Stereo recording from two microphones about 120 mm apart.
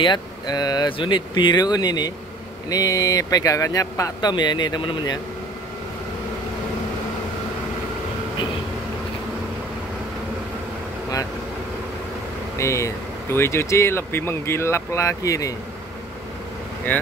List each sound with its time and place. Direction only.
0.0 s speech: 35° left (ahead or behind)
12.5 s speech: 25° left (ahead or behind)